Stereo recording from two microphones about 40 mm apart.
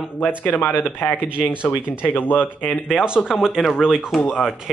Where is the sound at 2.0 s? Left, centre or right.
Left.